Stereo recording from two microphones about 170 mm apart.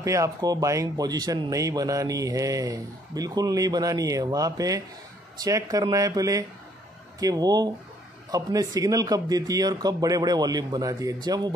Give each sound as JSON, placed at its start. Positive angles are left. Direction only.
{"t": 0.0, "sound": "speech", "side_deg": -20}